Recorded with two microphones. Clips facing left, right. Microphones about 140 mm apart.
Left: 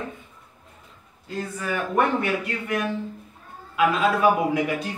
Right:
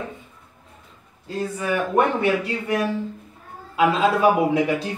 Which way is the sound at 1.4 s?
20° right (ahead or behind).